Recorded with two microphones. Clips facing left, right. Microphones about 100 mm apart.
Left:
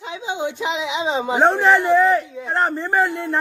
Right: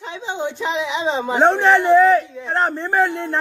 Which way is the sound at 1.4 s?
Centre (ahead or behind).